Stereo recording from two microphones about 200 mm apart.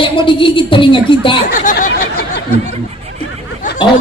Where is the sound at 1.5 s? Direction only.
40° left (ahead or behind).